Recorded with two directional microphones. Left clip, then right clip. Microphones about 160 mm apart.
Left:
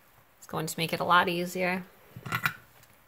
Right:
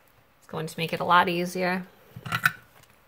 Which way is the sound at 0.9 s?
5° left (ahead or behind).